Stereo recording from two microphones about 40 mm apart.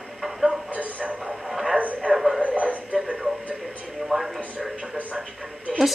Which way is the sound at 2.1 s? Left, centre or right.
Right.